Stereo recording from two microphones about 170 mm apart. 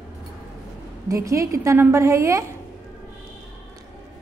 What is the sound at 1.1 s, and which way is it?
A woman's voice, 20° right (ahead or behind).